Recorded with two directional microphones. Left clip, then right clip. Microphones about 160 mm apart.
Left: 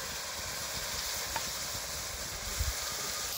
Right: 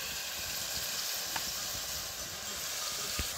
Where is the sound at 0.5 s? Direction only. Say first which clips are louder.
Even; 30° left (ahead or behind).